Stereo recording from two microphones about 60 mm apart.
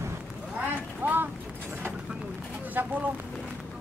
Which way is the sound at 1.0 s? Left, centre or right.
Right.